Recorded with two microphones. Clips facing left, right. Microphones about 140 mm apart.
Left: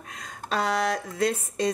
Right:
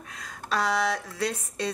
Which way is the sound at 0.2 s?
30° left (ahead or behind).